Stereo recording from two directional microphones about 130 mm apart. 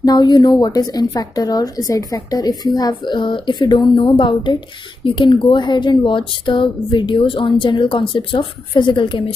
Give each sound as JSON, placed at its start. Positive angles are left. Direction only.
{"t": 0.0, "sound": "a woman's voice", "side_deg": 30}